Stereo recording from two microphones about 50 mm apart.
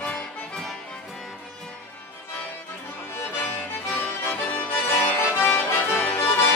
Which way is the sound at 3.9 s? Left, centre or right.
Left.